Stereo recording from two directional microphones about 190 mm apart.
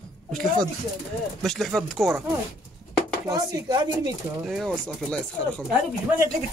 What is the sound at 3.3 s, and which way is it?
Speech, 20° right (ahead or behind).